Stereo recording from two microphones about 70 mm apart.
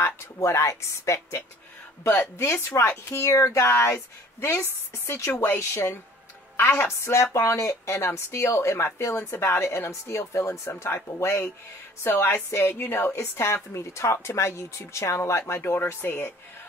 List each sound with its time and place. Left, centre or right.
0.0 s a woman's voice: left